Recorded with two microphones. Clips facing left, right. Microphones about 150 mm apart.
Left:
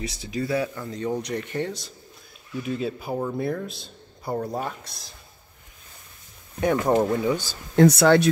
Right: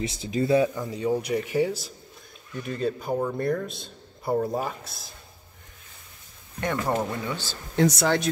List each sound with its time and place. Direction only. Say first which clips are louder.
0.0 s speech: right 3 dB; 25° right (ahead or behind)
0.8 s speech: right 2 dB; 10° right (ahead or behind)
6.6 s speech: left 6 dB; 10° left (ahead or behind)
7.7 s speech: left 6 dB; 60° left (ahead or behind)